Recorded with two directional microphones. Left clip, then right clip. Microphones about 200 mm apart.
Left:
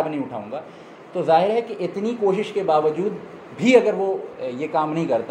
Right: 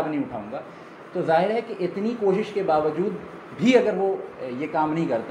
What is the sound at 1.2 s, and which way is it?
Speech, 20° left (ahead or behind).